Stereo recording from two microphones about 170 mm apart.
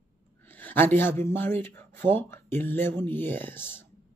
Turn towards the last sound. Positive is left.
turn(degrees=10)  # may be behind; listen again after turning